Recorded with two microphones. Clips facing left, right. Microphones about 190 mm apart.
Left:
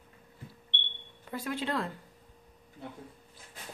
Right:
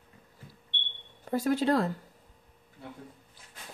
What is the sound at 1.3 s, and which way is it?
Speech, 40° right (ahead or behind).